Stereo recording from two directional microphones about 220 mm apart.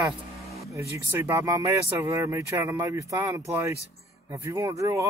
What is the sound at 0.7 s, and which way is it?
Speech, 10° right (ahead or behind).